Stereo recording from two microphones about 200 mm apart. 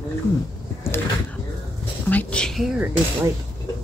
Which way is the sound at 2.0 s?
5° left (ahead or behind).